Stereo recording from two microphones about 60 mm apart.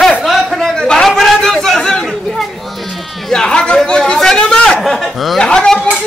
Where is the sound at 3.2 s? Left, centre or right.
Centre.